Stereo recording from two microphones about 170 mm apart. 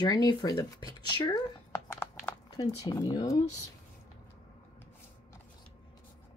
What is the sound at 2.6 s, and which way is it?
Speech, 25° left (ahead or behind).